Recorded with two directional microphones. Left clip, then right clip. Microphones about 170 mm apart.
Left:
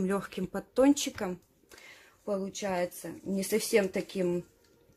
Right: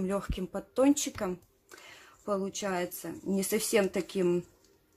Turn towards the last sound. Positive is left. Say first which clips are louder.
# right 1 dB
turn(degrees=-10)  # may be behind; listen again after turning